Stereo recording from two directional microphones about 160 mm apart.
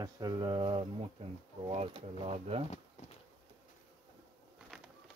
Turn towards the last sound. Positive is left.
turn(degrees=-5)  # may be behind; listen again after turning